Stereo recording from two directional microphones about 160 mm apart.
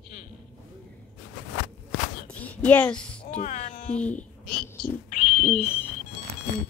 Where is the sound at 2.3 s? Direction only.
10° left (ahead or behind).